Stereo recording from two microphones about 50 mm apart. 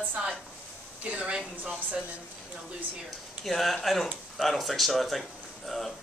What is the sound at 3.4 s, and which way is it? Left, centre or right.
Speech, centre.